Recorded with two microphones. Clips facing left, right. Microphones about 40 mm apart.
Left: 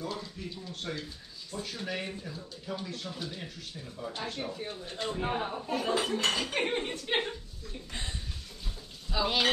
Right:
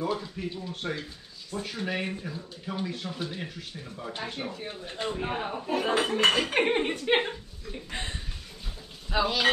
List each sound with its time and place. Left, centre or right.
0.0 s speech: right
5.9 s speech: right
9.1 s frying: right